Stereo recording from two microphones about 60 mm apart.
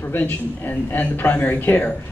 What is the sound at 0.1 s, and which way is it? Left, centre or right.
Speech, left.